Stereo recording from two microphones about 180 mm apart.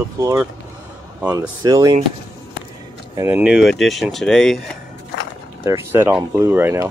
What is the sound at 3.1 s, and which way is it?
Speech, 10° right (ahead or behind).